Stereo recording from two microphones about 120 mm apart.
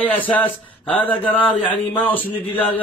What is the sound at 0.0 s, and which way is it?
Speech, 15° left (ahead or behind).